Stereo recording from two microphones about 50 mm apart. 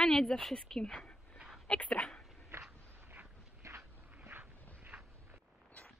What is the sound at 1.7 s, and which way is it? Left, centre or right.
Speech, left.